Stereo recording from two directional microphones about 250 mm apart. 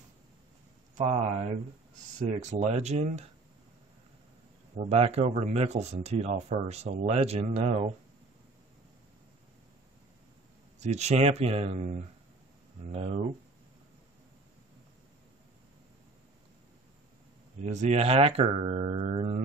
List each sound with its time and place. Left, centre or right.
2.1 s speech: right
4.7 s speech: right
10.8 s speech: right
17.6 s speech: right